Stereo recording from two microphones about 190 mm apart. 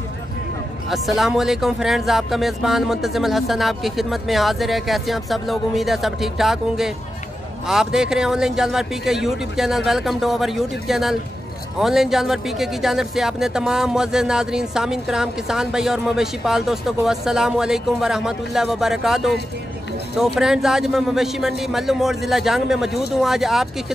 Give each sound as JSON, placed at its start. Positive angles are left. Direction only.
{"t": 0.8, "sound": "speech", "side_deg": 0}